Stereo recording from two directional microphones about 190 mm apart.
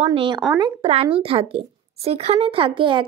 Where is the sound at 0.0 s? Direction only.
30° right (ahead or behind).